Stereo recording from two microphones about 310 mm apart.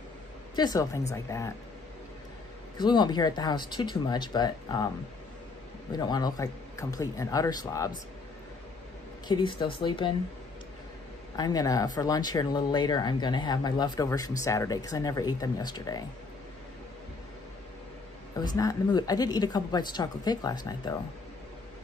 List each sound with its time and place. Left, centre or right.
0.6 s speech: centre
2.8 s speech: centre
5.9 s speech: centre
9.3 s speech: centre
11.3 s speech: centre
18.3 s speech: centre